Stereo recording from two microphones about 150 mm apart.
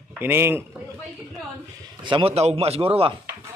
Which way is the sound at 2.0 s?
35° right (ahead or behind).